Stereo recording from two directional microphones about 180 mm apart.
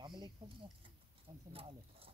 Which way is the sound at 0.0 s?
25° right (ahead or behind).